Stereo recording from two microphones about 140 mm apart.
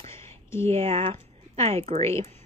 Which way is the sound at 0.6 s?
50° right (ahead or behind).